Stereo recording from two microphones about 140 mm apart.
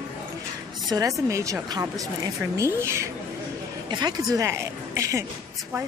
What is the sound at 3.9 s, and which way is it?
Speech, 30° right (ahead or behind).